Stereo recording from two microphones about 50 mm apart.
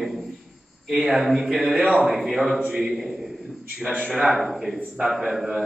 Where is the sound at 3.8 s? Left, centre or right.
Right.